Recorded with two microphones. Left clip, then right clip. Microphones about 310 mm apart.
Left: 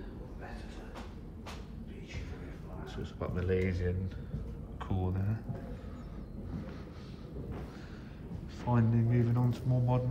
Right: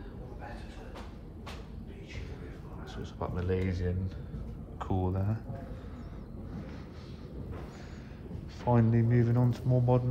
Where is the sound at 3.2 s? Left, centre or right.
Centre.